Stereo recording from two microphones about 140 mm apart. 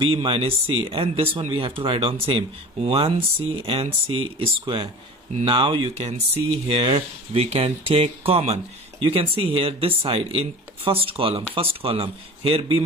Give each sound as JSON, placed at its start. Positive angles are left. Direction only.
{"t": 0.1, "sound": "speech", "side_deg": -40}